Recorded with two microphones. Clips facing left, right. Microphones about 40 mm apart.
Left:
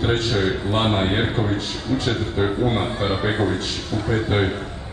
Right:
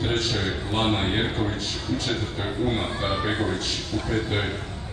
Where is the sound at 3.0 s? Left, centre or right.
Centre.